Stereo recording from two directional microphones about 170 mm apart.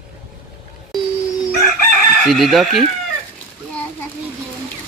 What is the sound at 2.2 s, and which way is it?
Speech, centre (ahead or behind).